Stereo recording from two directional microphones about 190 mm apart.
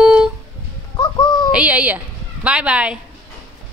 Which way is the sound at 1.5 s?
5° right (ahead or behind).